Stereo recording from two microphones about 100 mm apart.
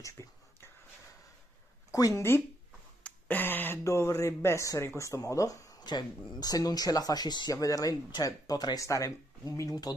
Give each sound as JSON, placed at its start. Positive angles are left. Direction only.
{"t": 0.0, "sound": "whispering", "side_deg": 30}
{"t": 1.9, "sound": "speech", "side_deg": 35}
{"t": 5.8, "sound": "a sound", "side_deg": 45}
{"t": 6.4, "sound": "speech", "side_deg": 40}